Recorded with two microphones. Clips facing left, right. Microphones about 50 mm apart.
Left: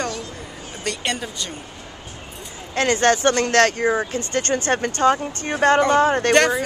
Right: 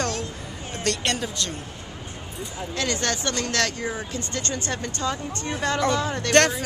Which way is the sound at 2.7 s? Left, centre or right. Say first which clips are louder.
Left 9 dB; left.